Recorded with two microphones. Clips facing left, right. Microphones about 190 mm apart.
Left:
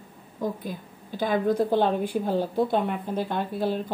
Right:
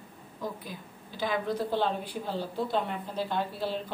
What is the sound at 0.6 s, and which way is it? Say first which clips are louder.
A woman's voice: left 7 dB; 50° left (ahead or behind).